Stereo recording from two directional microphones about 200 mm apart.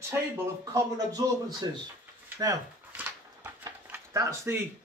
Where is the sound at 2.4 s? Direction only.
10° right (ahead or behind).